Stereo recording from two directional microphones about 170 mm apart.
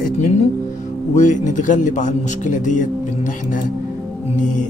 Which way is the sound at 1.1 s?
45° left (ahead or behind).